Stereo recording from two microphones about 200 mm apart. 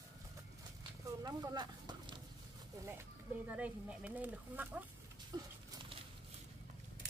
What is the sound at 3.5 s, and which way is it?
Speech, 5° right (ahead or behind).